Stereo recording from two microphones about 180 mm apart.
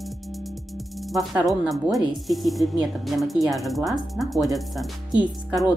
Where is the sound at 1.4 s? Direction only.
Centre (ahead or behind).